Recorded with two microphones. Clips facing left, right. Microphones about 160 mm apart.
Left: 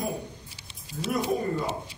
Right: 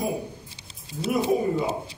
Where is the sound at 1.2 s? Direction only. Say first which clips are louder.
Right 5 dB; 10° right (ahead or behind).